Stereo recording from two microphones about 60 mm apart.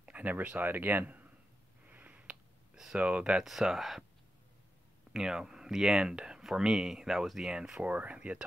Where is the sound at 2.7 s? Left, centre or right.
Centre.